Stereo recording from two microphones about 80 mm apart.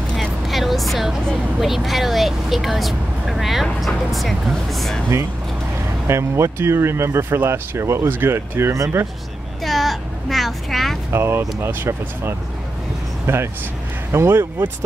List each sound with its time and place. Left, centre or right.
0.1 s speech: centre
6.0 s speech: right
9.7 s a sound: centre
11.1 s speech: right